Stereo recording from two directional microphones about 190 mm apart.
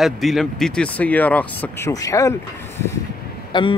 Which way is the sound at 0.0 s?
Centre (ahead or behind).